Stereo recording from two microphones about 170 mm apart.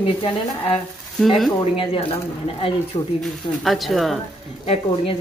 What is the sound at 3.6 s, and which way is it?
Speech, centre (ahead or behind).